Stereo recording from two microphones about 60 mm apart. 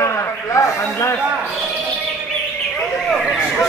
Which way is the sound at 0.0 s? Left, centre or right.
Left.